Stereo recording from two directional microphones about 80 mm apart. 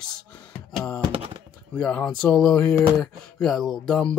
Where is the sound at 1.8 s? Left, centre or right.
Centre.